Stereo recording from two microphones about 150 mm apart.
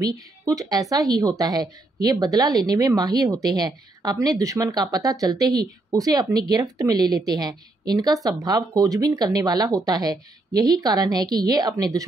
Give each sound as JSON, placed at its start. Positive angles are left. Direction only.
{"t": 0.0, "sound": "speech", "side_deg": -25}